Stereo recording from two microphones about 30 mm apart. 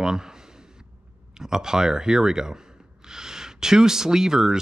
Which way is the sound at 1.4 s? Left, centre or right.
Centre.